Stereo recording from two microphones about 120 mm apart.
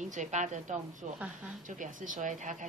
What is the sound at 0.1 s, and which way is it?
Speech, 90° right.